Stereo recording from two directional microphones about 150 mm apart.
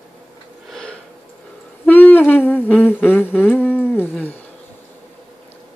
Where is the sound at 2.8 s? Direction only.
15° left (ahead or behind).